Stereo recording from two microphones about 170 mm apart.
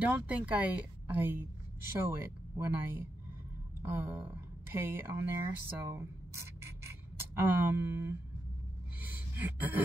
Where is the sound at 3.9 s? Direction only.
10° right (ahead or behind).